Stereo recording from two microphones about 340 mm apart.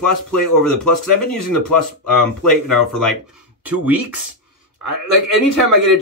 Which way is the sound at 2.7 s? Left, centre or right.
Centre.